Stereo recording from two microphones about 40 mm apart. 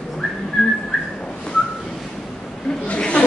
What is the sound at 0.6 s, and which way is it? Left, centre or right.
Whistling, centre.